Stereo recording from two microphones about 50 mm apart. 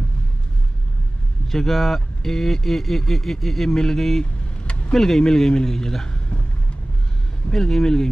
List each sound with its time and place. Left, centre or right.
1.5 s speech: centre
4.6 s vehicle: left
4.9 s speech: centre
7.5 s speech: centre